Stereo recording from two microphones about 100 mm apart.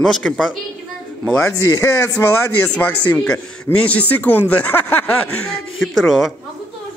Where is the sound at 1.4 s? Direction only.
30° left (ahead or behind).